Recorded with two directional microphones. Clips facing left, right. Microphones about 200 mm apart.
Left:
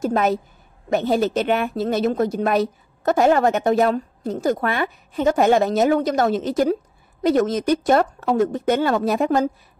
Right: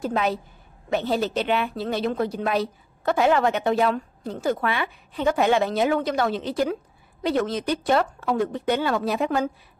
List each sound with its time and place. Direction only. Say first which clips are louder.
0.0 s a woman's voice: left 5 dB; 45° left (ahead or behind)